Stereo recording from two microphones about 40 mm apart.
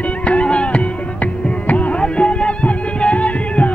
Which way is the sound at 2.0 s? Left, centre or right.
Left.